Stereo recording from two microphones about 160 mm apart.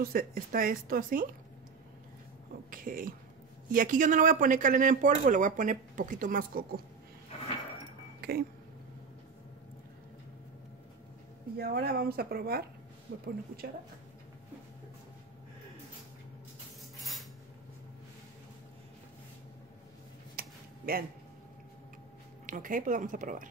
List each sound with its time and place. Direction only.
0.0 s speech: 70° right (ahead or behind)
2.7 s speech: 60° right (ahead or behind)
8.2 s a sound: 75° right (ahead or behind)
11.5 s speech: 75° right (ahead or behind)
13.1 s speech: 90° right
17.0 s cutlery: centre (ahead or behind)
20.3 s a sound: 70° right (ahead or behind)
22.5 s speech: 55° right (ahead or behind)